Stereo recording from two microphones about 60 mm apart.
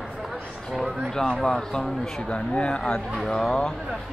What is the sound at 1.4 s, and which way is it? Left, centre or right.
Speech, centre.